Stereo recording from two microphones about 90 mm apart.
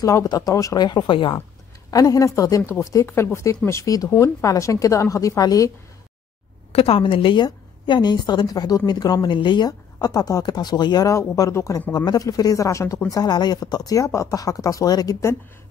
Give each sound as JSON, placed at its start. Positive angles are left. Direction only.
{"t": 0.0, "sound": "a woman's voice", "side_deg": 45}
{"t": 0.8, "sound": "speech", "side_deg": 60}
{"t": 1.9, "sound": "a woman's voice", "side_deg": 40}
{"t": 6.7, "sound": "a woman's voice", "side_deg": 90}
{"t": 7.4, "sound": "a woman's voice", "side_deg": 55}
{"t": 11.1, "sound": "a woman's voice", "side_deg": 40}
{"t": 11.9, "sound": "a woman's voice", "side_deg": 45}
{"t": 13.1, "sound": "a woman's voice", "side_deg": 50}